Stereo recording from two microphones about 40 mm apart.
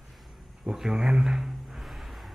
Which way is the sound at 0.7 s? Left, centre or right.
Centre.